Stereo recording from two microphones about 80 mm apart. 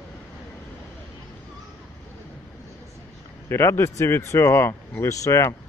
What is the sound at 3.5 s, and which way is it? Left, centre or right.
Speech, left.